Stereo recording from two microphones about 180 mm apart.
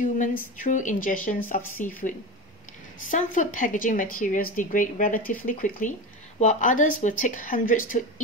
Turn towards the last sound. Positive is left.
turn(degrees=45)  # may be behind; listen again after turning